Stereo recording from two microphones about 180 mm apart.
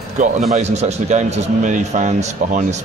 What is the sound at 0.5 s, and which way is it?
A man's voice, 40° right (ahead or behind).